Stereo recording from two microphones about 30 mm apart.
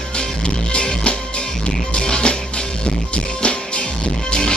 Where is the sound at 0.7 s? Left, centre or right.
Left.